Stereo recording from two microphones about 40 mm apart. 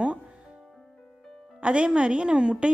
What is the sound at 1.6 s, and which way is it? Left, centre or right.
A woman's voice, right.